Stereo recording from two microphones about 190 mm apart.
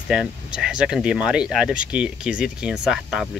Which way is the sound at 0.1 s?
5° right (ahead or behind).